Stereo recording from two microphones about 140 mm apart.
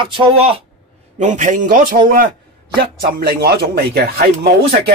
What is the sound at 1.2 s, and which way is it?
Speech, 60° right (ahead or behind).